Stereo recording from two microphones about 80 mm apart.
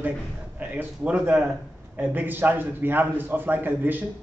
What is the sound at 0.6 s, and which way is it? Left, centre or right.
A man's voice, centre.